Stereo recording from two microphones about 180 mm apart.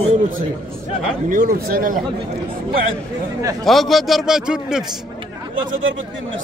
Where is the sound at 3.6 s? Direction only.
Centre (ahead or behind).